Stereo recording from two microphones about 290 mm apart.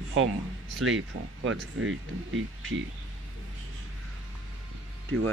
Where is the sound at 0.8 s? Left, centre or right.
Right.